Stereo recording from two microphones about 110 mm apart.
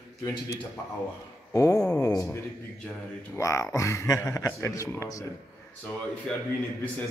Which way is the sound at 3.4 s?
30° left (ahead or behind).